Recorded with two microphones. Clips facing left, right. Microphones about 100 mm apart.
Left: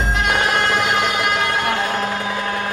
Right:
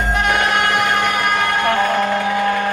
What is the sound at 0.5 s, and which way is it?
Music, 60° right (ahead or behind).